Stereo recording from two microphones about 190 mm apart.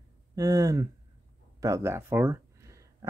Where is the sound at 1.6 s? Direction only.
15° right (ahead or behind).